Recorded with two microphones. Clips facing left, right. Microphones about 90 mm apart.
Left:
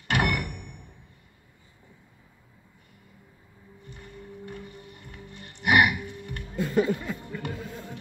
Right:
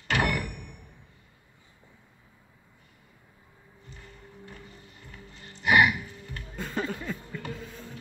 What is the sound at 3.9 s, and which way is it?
Music, 55° left (ahead or behind).